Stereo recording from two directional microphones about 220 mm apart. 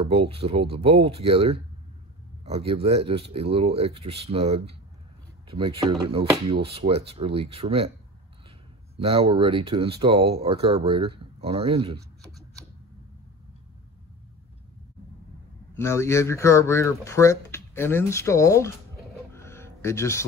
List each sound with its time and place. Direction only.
0.0 s speech: 25° right (ahead or behind)
8.9 s speech: 25° right (ahead or behind)
15.7 s speech: 10° left (ahead or behind)
19.3 s music: 10° left (ahead or behind)